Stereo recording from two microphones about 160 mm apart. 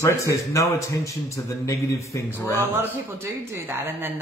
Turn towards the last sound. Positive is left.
turn(degrees=-15)  # may be behind; listen again after turning